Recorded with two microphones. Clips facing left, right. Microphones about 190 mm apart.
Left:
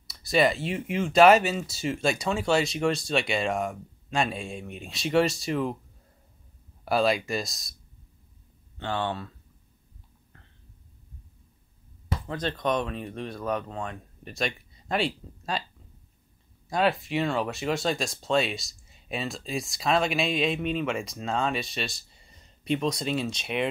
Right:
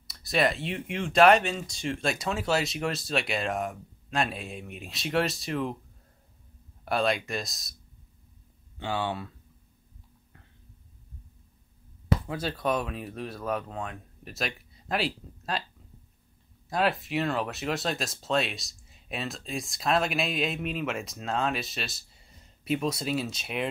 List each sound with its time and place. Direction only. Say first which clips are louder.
0.0 s speech: left 3 dB; centre (ahead or behind)
6.8 s speech: left 3 dB; centre (ahead or behind)
8.7 s speech: left 1 dB; 10° right (ahead or behind)
12.3 s speech: left 1 dB; 5° right (ahead or behind)
16.6 s speech: left 2 dB; centre (ahead or behind)